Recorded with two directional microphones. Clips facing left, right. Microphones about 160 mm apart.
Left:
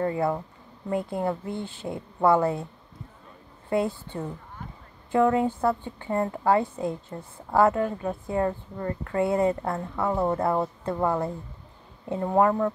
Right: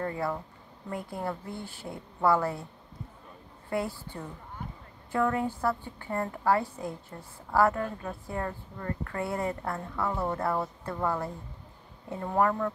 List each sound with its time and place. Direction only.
0.0 s a woman's voice: 15° left (ahead or behind)
3.7 s a woman's voice: 20° left (ahead or behind)